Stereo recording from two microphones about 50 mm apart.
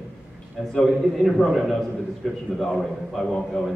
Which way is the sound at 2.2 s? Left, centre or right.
Centre.